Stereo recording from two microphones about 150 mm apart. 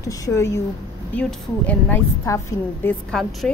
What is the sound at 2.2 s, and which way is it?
Speech, 20° left (ahead or behind).